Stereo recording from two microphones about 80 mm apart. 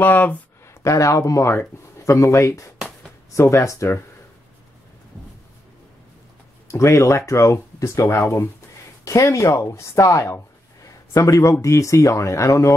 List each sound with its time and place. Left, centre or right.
0.0 s speech: left
0.8 s speech: left
6.7 s speech: left